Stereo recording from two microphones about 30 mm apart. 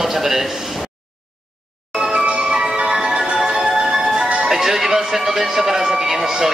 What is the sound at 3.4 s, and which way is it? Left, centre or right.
Music, right.